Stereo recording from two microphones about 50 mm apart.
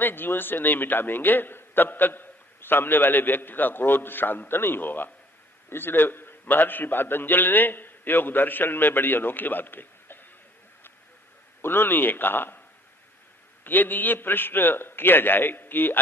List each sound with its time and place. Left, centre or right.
0.0 s a man's voice: left
11.6 s a man's voice: left
13.7 s a man's voice: left